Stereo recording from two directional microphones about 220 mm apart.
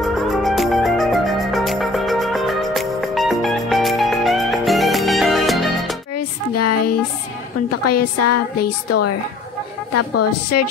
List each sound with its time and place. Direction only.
0.0 s music: centre (ahead or behind)
6.1 s a sound: 90° left
7.8 s a woman's voice: 90° left
9.9 s a woman's voice: 90° left